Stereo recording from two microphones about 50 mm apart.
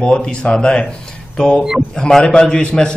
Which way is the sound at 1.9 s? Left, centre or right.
Centre.